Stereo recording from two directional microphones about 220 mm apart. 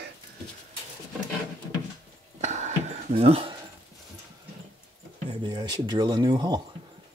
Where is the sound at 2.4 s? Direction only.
30° right (ahead or behind).